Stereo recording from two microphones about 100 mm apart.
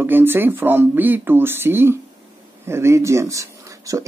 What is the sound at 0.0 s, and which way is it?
Speech, 20° right (ahead or behind).